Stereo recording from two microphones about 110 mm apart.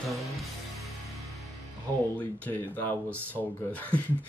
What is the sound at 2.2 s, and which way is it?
Speech, 15° left (ahead or behind).